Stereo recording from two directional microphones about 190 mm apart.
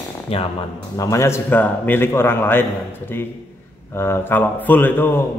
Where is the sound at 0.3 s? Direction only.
30° left (ahead or behind).